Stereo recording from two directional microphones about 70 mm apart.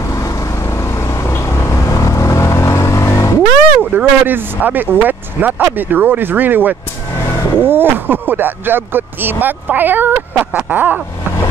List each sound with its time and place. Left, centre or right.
0.1 s vehicle: left
3.9 s speech: right
7.2 s vehicle: left
7.6 s speech: right